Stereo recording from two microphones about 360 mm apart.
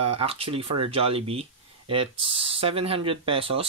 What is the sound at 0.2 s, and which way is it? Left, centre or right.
Speech, centre.